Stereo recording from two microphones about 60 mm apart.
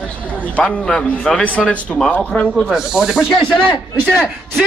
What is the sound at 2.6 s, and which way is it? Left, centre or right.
Speech, centre.